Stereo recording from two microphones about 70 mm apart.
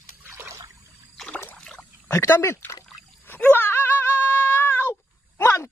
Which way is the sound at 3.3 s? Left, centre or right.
Left.